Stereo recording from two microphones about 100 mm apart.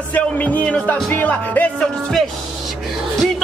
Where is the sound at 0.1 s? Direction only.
15° left (ahead or behind).